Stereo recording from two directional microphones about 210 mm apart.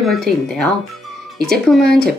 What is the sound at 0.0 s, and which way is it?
Speech, centre (ahead or behind).